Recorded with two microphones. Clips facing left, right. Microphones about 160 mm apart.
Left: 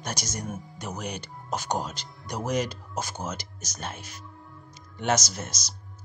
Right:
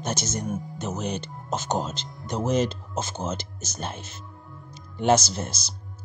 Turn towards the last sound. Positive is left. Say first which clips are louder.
# right 5 dB
turn(degrees=-30)  # may be behind; listen again after turning